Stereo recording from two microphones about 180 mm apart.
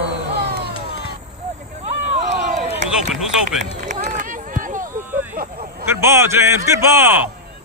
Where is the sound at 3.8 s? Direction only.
45° right (ahead or behind).